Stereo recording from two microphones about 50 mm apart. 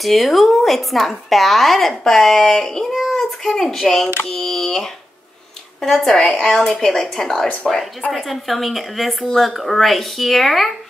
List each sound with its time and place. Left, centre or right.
0.0 s speech: centre
3.2 s a sound: centre
3.7 s a woman's voice: centre